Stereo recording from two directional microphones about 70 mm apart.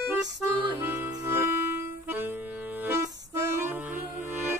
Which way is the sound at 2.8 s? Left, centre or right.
Right.